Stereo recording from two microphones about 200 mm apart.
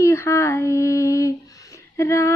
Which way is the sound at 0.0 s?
15° left (ahead or behind).